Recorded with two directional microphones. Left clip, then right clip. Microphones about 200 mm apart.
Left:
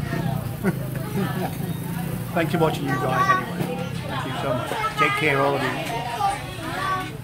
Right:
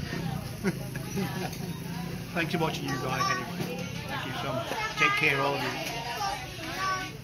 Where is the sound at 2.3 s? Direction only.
15° left (ahead or behind).